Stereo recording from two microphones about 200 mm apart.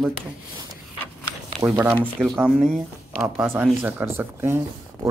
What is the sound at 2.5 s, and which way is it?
Speech, centre (ahead or behind).